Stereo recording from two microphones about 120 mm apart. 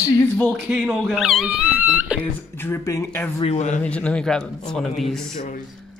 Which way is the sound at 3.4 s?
70° left (ahead or behind).